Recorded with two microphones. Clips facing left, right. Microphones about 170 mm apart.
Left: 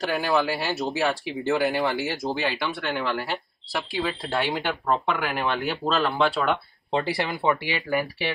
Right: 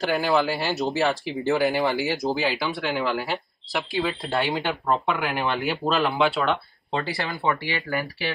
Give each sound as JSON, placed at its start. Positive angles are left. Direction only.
{"t": 0.0, "sound": "speech", "side_deg": 0}
{"t": 6.9, "sound": "speech", "side_deg": 15}